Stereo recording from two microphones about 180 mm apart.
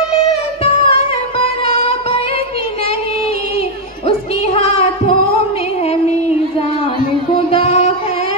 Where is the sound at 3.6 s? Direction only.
35° left (ahead or behind).